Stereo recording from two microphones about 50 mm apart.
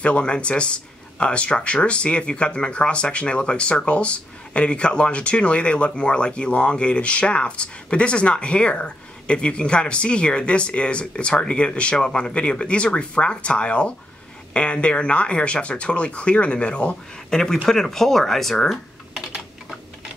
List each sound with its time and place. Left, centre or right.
0.0 s speech: left
17.3 s speech: centre